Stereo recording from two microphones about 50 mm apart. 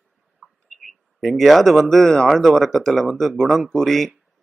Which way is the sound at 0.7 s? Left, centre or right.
Centre.